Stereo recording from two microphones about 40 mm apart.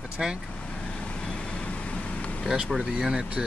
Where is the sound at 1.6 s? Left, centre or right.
Left.